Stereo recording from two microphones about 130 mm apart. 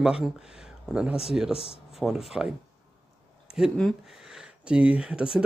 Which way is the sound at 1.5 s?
50° left (ahead or behind).